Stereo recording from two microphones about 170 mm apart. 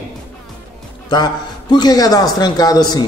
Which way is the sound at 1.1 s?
25° left (ahead or behind).